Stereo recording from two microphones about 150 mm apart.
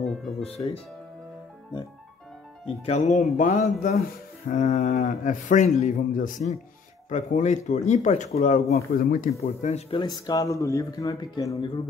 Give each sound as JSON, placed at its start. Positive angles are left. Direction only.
{"t": 0.0, "sound": "music", "side_deg": 5}
{"t": 0.4, "sound": "speech", "side_deg": 45}
{"t": 2.6, "sound": "a man's voice", "side_deg": 45}
{"t": 8.7, "sound": "a man's voice", "side_deg": 65}
{"t": 9.4, "sound": "speech", "side_deg": 50}
{"t": 9.9, "sound": "speech", "side_deg": 25}